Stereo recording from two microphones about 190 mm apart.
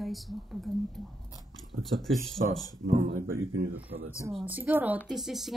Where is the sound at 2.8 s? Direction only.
45° right (ahead or behind).